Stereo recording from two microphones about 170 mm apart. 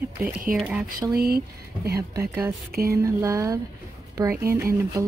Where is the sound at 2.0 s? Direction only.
20° right (ahead or behind).